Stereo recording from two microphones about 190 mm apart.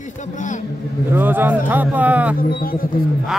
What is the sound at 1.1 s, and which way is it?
Speech, 10° right (ahead or behind).